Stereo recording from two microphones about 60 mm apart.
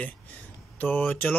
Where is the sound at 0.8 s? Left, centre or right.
Left.